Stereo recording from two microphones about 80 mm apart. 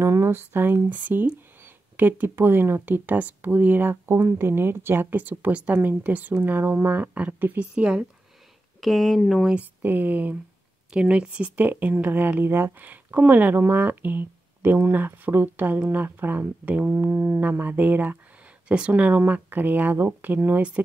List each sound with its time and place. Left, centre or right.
0.0 s speech: right; by 8.1 s centre
8.8 s speech: centre
9.5 s speech: centre